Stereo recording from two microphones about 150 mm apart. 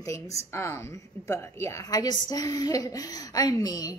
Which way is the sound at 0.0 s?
20° left (ahead or behind).